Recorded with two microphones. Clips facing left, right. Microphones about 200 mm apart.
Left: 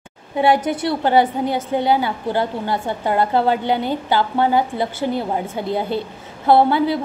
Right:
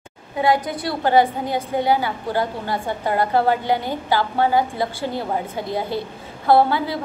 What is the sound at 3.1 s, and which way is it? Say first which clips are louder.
Speech: left 1 dB; 25° left (ahead or behind).